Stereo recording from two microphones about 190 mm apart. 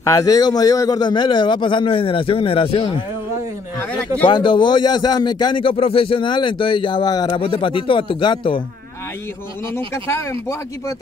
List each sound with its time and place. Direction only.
0.0 s a man's voice: 20° left (ahead or behind)
4.3 s a man's voice: 25° left (ahead or behind)
9.8 s speech: 15° left (ahead or behind)